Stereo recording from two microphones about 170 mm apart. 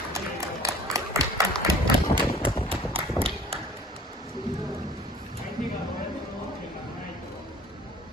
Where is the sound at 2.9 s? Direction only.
35° right (ahead or behind).